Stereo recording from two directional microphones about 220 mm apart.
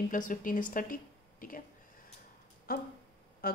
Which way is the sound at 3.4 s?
40° left (ahead or behind).